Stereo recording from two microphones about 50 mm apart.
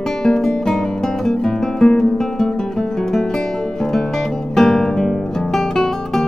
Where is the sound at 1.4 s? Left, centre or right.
Centre.